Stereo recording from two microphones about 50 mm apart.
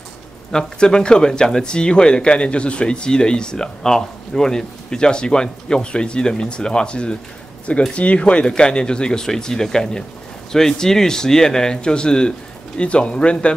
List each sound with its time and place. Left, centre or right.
0.5 s speech: centre